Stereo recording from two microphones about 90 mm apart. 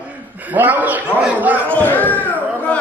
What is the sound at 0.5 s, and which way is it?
Speech, 20° right (ahead or behind).